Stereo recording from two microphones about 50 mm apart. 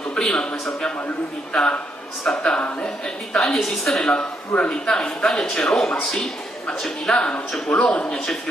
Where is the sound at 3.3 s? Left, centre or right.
Centre.